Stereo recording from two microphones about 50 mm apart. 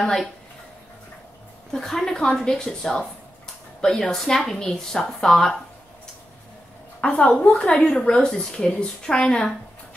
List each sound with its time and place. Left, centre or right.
0.0 s a woman's voice: centre
1.7 s a woman's voice: centre
7.0 s speech: left